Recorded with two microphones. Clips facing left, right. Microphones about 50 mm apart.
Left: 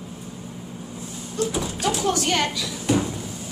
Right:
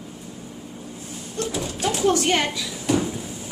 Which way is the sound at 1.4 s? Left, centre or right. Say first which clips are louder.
Left 3 dB; right.